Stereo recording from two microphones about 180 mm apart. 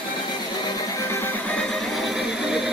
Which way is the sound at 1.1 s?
10° left (ahead or behind).